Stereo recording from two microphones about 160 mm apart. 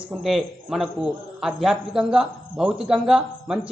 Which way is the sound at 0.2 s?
Centre (ahead or behind).